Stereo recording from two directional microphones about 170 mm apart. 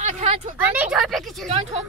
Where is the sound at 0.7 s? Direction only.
5° right (ahead or behind).